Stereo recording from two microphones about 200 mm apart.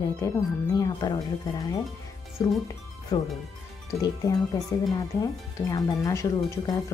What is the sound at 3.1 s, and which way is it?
Speech, 15° left (ahead or behind).